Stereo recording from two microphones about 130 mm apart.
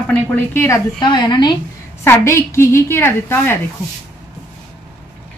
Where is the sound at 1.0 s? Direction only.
35° left (ahead or behind).